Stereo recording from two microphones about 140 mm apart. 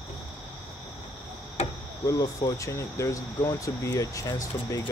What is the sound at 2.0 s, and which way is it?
Speech, 25° left (ahead or behind).